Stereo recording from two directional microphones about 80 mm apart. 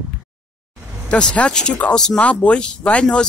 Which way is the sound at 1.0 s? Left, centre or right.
Centre.